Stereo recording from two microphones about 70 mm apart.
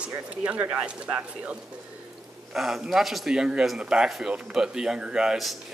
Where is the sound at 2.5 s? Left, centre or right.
Centre.